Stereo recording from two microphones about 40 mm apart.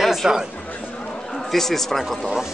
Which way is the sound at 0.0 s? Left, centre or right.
Centre.